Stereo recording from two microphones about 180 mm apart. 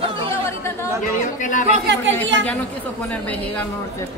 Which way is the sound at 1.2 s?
45° left (ahead or behind).